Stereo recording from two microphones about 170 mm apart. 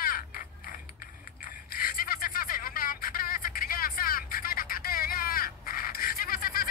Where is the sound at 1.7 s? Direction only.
60° left (ahead or behind).